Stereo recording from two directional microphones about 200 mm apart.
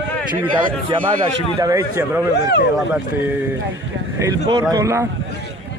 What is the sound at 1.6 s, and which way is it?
Speech, 15° right (ahead or behind).